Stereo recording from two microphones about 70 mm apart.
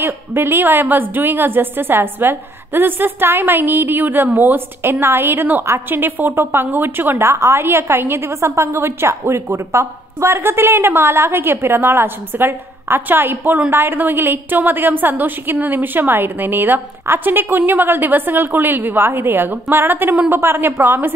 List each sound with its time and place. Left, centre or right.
0.0 s a woman's voice: right
7.2 s a woman's voice: right